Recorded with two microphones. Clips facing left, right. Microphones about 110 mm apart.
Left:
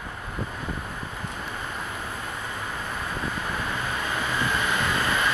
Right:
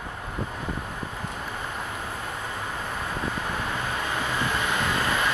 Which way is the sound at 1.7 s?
15° right (ahead or behind).